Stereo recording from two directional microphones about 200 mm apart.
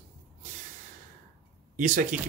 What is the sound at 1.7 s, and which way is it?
Speech, 40° right (ahead or behind).